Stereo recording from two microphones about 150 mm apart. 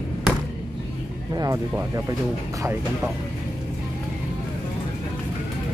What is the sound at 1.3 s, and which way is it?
Music, 20° right (ahead or behind).